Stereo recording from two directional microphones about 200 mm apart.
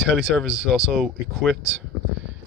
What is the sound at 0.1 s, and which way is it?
Speech, centre (ahead or behind).